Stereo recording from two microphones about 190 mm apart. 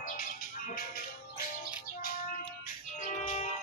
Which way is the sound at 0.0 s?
45° left (ahead or behind).